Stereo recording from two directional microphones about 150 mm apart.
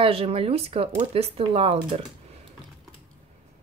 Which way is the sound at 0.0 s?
40° right (ahead or behind).